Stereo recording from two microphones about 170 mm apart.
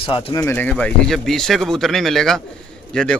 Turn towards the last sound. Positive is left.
turn(degrees=5)  # may be behind; listen again after turning